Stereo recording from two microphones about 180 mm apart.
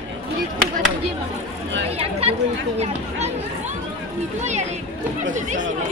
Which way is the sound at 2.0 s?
35° right (ahead or behind).